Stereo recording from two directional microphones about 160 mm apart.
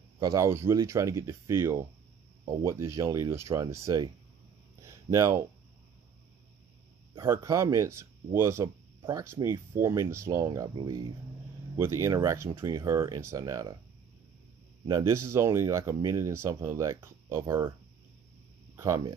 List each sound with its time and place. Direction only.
0.2 s speech: 20° right (ahead or behind)
4.8 s a sound: 15° right (ahead or behind)
7.2 s speech: 20° right (ahead or behind)
14.9 s speech: 20° right (ahead or behind)
18.8 s speech: 20° right (ahead or behind)